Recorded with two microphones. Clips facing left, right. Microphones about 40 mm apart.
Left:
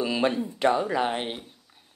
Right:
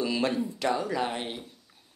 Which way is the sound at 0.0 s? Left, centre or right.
Left.